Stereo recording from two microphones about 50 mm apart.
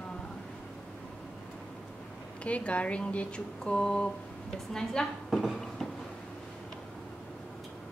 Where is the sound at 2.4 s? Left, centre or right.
Left.